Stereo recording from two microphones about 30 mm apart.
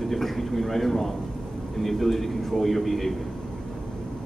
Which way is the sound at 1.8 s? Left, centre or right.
Centre.